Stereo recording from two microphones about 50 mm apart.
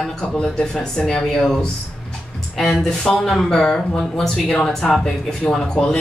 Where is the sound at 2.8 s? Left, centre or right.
Centre.